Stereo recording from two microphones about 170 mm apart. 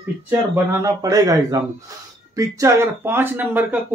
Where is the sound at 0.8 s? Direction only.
20° right (ahead or behind).